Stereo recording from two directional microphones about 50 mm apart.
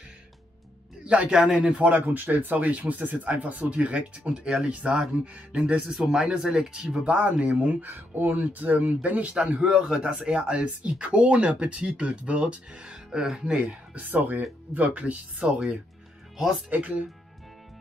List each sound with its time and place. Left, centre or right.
1.0 s a man's voice: right
1.8 s speech: right
5.9 s speech: centre
7.1 s speech: right
7.8 s speech: right
9.8 s speech: centre
14.1 s speech: right
16.7 s speech: right